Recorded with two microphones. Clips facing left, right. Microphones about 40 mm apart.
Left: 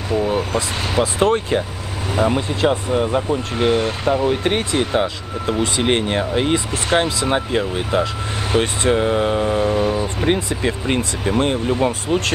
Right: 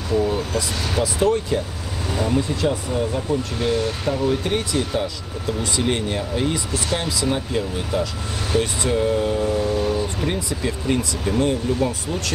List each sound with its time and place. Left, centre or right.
0.3 s speech: left